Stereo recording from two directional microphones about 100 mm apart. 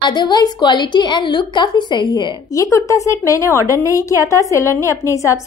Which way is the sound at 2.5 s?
35° left (ahead or behind).